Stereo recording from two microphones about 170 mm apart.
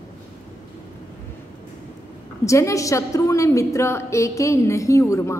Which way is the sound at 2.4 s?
15° left (ahead or behind).